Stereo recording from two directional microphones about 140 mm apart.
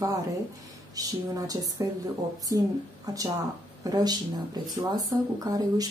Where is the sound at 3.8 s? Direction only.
30° right (ahead or behind).